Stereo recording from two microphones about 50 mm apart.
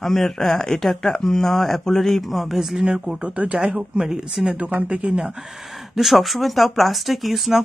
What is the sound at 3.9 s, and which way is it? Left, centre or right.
Speech, centre.